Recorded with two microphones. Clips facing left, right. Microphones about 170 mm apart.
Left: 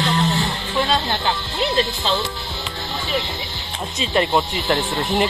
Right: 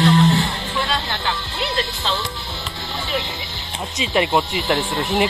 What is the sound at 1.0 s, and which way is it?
Music, 25° left (ahead or behind).